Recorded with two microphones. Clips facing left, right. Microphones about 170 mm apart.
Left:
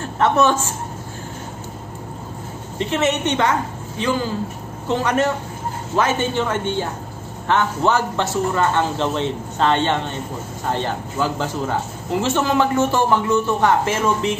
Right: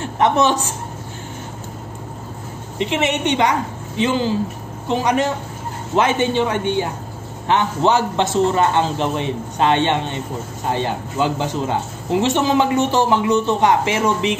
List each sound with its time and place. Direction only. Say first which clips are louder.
0.0 s a woman's voice: even; 20° right (ahead or behind)
2.8 s a woman's voice: even; 15° right (ahead or behind)